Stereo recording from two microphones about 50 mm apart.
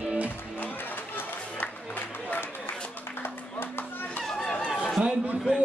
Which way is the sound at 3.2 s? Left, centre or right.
Left.